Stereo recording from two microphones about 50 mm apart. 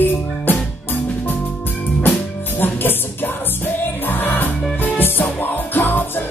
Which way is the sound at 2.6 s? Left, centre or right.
Left.